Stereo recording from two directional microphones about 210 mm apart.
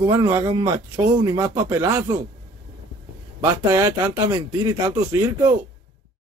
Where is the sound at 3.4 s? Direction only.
15° right (ahead or behind).